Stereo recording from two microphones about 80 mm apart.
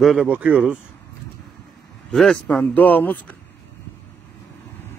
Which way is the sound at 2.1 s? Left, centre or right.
Centre.